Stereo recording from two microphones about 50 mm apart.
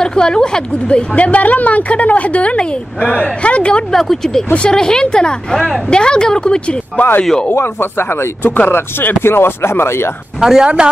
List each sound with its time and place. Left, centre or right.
0.0 s a woman's voice: centre
3.9 s speech: centre
7.5 s speech: left
8.4 s speech: left
8.6 s speech: left
10.4 s speech: centre